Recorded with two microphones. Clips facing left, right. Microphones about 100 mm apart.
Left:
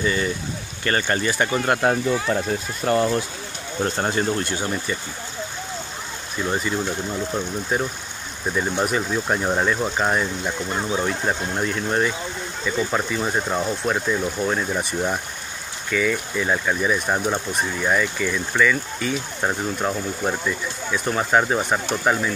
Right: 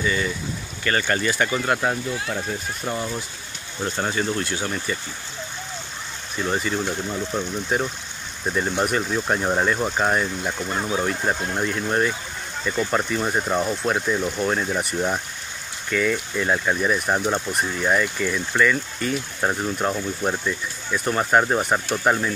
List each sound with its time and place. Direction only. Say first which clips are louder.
0.0 s speech: left 1 dB; 35° left (ahead or behind)
1.6 s speech: left 3 dB; 50° left (ahead or behind)
2.9 s speech: left 9 dB; 70° left (ahead or behind)
3.8 s speech: left 2 dB; 35° left (ahead or behind)
4.6 s speech: left 1 dB; 25° left (ahead or behind)
6.4 s speech: even; centre (ahead or behind)